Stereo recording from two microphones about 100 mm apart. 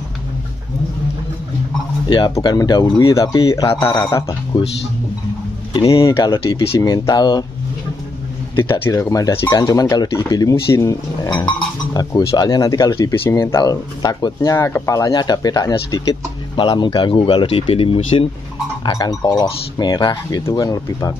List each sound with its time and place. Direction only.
2.0 s speech: 50° left (ahead or behind)
2.8 s a man's voice: 35° left (ahead or behind)
5.7 s speech: 50° left (ahead or behind)
5.9 s speech: 35° left (ahead or behind)
8.9 s speech: 35° left (ahead or behind)
13.3 s a man's voice: 30° left (ahead or behind)
13.6 s speech: 40° left (ahead or behind)
16.5 s speech: 55° left (ahead or behind); by 18.2 s 70° left (ahead or behind)
18.9 s speech: 40° left (ahead or behind)
20.4 s speech: 35° left (ahead or behind)